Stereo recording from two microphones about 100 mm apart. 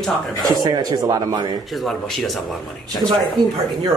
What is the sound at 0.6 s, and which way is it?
Speech, 40° right (ahead or behind).